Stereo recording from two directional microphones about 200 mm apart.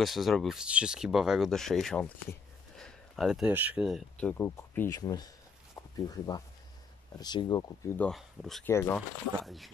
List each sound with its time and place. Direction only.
0.0 s speech: centre (ahead or behind)
8.1 s speech: centre (ahead or behind)
8.6 s speech: 10° left (ahead or behind)
9.4 s speech: centre (ahead or behind)